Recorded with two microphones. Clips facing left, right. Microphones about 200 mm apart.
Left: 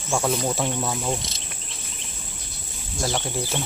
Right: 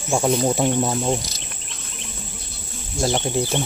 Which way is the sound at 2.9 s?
20° right (ahead or behind).